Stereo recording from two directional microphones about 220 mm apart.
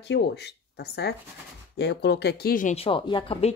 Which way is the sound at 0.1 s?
50° left (ahead or behind).